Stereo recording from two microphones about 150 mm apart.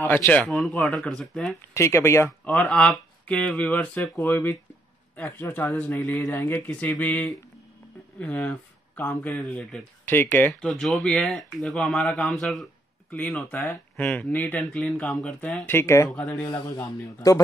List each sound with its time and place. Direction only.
0.0 s speech: 15° left (ahead or behind)
1.7 s speech: 20° left (ahead or behind)
10.7 s speech: centre (ahead or behind)
16.5 s speech: 30° left (ahead or behind)